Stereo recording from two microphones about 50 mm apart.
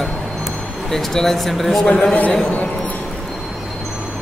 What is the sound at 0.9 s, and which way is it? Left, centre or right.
Speech, centre.